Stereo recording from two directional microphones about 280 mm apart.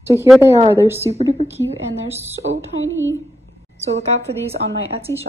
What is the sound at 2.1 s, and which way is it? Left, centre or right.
Speech, centre.